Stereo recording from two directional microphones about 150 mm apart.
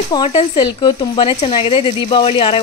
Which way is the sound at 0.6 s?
30° left (ahead or behind).